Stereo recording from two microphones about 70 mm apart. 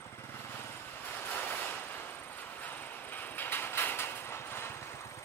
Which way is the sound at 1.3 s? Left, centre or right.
Left.